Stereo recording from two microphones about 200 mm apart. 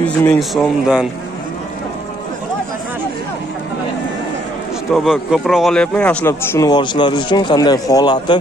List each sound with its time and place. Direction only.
0.0 s speech: 10° left (ahead or behind)
4.9 s speech: centre (ahead or behind); by 8.4 s 20° left (ahead or behind)